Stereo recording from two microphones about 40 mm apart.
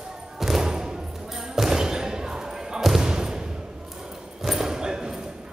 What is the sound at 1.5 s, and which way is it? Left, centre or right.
Basketball bounce, centre.